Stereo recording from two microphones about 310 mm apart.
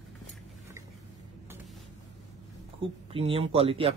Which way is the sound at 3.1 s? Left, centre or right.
Centre.